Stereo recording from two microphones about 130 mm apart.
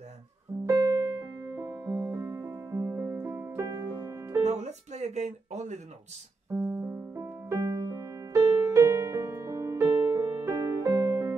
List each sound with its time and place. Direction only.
0.7 s music: 25° right (ahead or behind)
4.5 s music: 60° right (ahead or behind)
6.5 s music: 15° right (ahead or behind)